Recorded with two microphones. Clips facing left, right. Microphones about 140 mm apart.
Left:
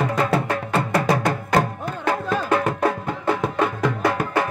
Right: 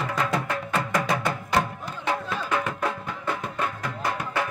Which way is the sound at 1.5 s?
45° left (ahead or behind).